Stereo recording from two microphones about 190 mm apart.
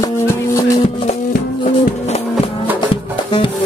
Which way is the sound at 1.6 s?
40° left (ahead or behind).